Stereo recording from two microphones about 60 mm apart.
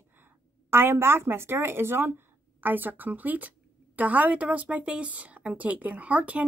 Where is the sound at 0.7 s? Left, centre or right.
Right.